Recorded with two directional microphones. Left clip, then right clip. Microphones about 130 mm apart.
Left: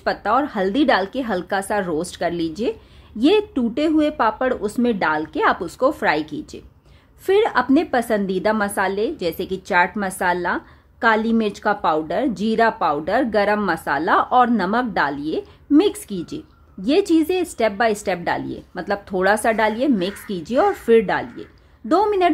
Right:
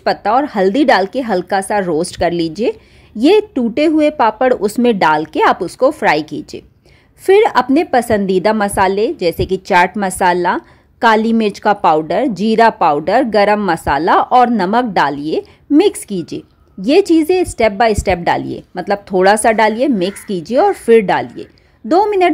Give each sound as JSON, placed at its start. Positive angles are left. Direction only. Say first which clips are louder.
{"t": 0.0, "sound": "speech", "louder": "right 6 dB", "side_deg": -35}
{"t": 5.6, "sound": "a woman's voice", "louder": "right 6 dB", "side_deg": -30}
{"t": 6.0, "sound": "speech", "louder": "right 7 dB", "side_deg": -40}
{"t": 21.8, "sound": "a woman's voice", "louder": "right 5 dB", "side_deg": -25}